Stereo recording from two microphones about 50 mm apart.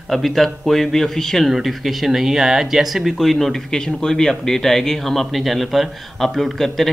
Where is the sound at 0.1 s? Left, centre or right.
Centre.